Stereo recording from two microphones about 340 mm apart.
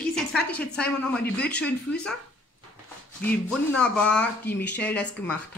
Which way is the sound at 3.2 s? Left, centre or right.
Centre.